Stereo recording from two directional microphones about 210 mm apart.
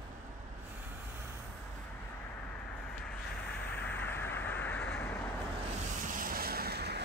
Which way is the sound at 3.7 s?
10° left (ahead or behind).